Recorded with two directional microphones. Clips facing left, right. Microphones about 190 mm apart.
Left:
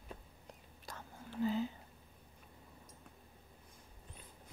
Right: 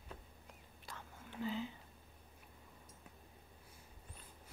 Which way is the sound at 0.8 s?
40° left (ahead or behind).